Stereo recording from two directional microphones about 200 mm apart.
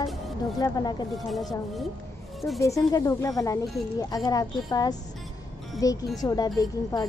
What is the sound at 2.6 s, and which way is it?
Speech, 15° left (ahead or behind).